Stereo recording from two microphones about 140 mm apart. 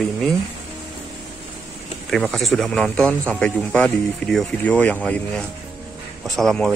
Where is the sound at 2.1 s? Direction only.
Centre (ahead or behind).